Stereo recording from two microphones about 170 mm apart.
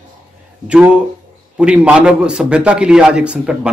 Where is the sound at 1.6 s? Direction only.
5° right (ahead or behind).